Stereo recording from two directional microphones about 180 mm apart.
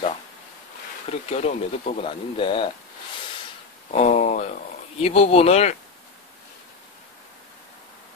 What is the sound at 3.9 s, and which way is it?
Speech, 40° left (ahead or behind).